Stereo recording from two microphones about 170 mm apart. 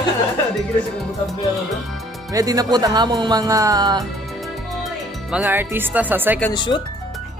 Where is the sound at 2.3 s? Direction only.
20° right (ahead or behind).